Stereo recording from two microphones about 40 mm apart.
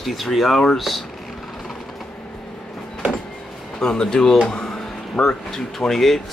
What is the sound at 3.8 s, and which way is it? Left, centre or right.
Speech, centre.